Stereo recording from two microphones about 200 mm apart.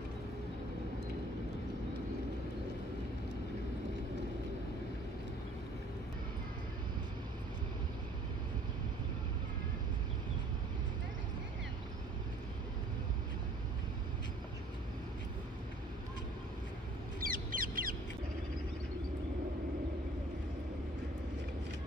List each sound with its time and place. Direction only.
17.2 s bird: 45° right (ahead or behind)